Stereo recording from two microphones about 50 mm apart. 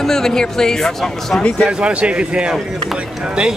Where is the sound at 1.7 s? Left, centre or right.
Right.